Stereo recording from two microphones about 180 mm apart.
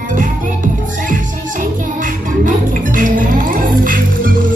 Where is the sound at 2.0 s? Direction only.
45° right (ahead or behind).